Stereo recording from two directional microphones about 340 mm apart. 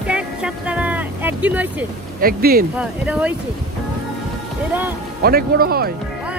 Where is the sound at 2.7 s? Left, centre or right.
Centre.